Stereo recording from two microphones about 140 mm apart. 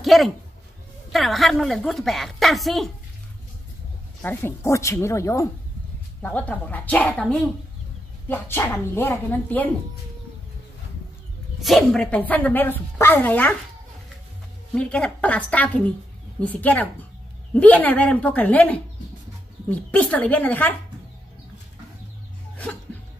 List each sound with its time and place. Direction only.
0.0 s a woman's voice: centre (ahead or behind)
4.2 s a woman's voice: 15° left (ahead or behind)
11.6 s speech: 5° left (ahead or behind)
14.7 s speech: 10° left (ahead or behind)